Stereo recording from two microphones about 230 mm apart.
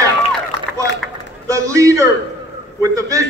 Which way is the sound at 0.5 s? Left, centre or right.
Left.